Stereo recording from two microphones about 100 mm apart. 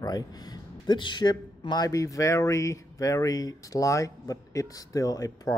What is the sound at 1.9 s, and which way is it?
A man's voice, 35° left (ahead or behind).